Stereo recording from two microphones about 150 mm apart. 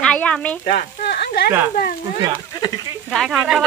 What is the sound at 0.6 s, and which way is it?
Speech, 90° left.